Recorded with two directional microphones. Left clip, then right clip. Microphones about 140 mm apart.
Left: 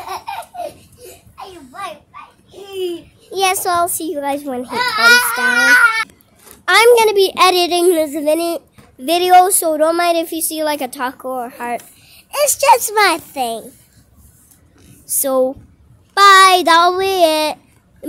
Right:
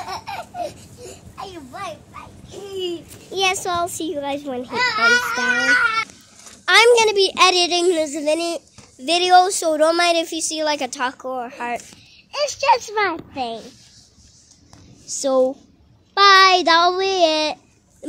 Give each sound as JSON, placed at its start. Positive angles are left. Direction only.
{"t": 0.2, "sound": "laughter", "side_deg": -10}
{"t": 1.7, "sound": "children playing", "side_deg": -5}
{"t": 2.7, "sound": "babbling", "side_deg": 0}
{"t": 3.3, "sound": "a woman's voice", "side_deg": 25}
{"t": 6.6, "sound": "a woman's voice", "side_deg": 15}
{"t": 9.7, "sound": "a woman's voice", "side_deg": 5}
{"t": 12.3, "sound": "a woman's voice", "side_deg": 25}
{"t": 15.1, "sound": "a woman's voice", "side_deg": 20}